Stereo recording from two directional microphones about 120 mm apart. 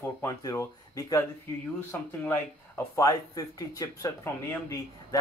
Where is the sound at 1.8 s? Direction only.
15° left (ahead or behind).